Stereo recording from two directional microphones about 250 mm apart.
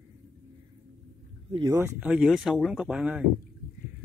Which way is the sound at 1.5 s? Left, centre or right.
Centre.